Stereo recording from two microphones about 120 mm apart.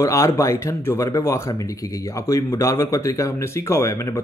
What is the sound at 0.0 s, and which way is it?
Speech, 25° left (ahead or behind).